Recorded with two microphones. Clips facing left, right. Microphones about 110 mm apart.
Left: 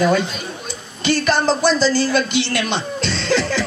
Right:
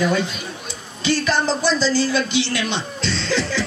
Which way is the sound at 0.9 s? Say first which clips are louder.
Left 2 dB; 60° left (ahead or behind).